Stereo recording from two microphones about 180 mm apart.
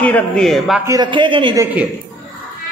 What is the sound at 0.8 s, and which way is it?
Speech, 20° right (ahead or behind).